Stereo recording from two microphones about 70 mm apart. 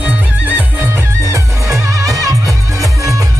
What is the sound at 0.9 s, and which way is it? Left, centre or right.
Music, right.